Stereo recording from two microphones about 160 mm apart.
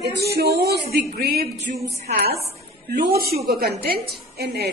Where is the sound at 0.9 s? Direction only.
70° right (ahead or behind).